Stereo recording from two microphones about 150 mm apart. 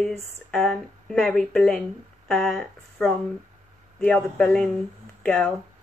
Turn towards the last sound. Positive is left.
turn(degrees=5)  # may be behind; listen again after turning